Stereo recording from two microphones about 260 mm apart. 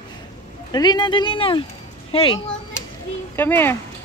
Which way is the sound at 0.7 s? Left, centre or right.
Centre.